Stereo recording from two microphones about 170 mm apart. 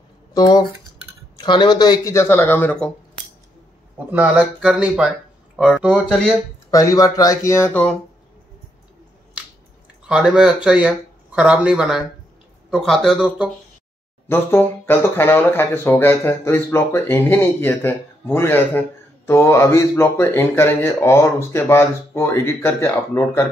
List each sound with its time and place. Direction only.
0.3 s speech: 20° left (ahead or behind)
4.1 s speech: 10° right (ahead or behind)
6.7 s speech: 20° left (ahead or behind)
10.0 s speech: 5° right (ahead or behind)
14.3 s speech: 15° left (ahead or behind)